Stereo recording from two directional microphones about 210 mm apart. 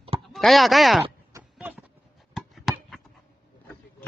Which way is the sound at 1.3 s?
10° right (ahead or behind).